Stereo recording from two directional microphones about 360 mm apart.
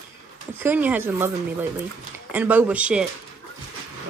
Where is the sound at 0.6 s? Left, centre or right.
Centre.